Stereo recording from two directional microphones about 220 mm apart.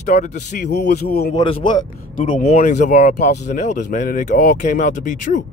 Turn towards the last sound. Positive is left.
turn(degrees=35)  # may be behind; listen again after turning